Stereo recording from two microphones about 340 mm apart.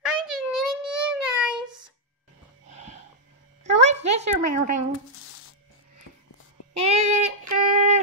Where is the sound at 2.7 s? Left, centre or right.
Right.